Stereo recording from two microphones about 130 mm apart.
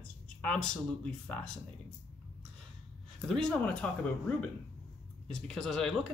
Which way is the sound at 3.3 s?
5° left (ahead or behind).